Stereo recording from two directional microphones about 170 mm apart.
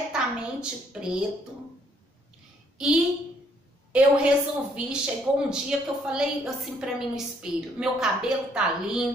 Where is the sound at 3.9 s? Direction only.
5° right (ahead or behind).